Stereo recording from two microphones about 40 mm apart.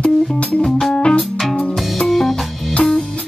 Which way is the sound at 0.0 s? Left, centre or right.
Left.